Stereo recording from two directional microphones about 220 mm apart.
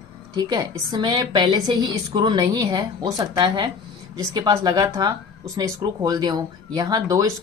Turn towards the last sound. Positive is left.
turn(degrees=-15)  # may be behind; listen again after turning